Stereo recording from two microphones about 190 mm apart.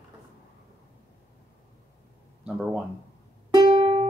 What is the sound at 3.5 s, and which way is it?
Music, 25° right (ahead or behind).